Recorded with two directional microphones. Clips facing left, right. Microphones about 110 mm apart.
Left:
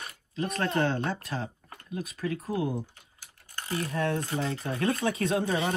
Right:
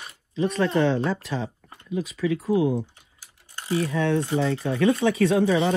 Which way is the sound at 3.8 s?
90° right.